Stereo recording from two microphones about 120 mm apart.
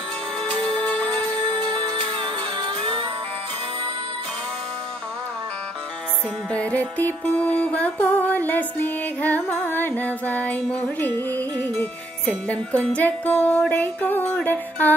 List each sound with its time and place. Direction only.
0.7 s music: 10° left (ahead or behind)
1.6 s music: 40° right (ahead or behind)
6.5 s music: 10° left (ahead or behind)
12.4 s music: 10° left (ahead or behind)